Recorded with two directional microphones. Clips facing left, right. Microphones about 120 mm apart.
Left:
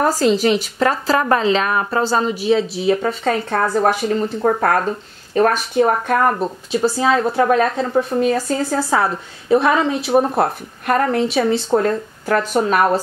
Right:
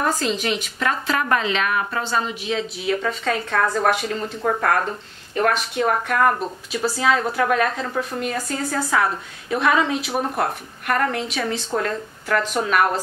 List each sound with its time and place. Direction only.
0.0 s speech: 35° left (ahead or behind)